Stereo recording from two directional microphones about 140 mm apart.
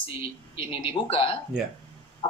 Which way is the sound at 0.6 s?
40° left (ahead or behind).